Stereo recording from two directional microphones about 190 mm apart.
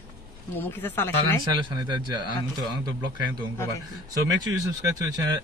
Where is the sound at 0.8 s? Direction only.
10° left (ahead or behind).